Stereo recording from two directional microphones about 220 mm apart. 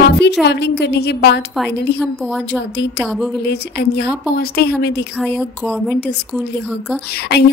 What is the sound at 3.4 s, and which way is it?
A woman's voice, 50° left (ahead or behind).